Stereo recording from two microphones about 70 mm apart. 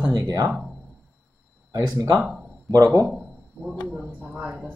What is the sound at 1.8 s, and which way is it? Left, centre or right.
Speech, right.